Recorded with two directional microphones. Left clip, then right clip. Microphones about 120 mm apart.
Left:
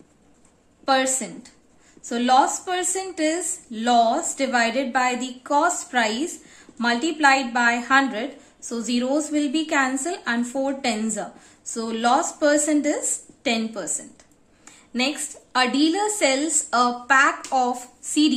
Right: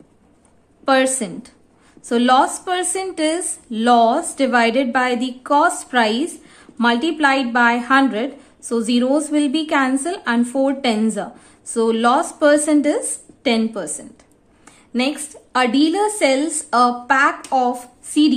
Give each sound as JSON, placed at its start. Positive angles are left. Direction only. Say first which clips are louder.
{"t": 0.8, "sound": "a woman's voice", "louder": "right 5 dB", "side_deg": -55}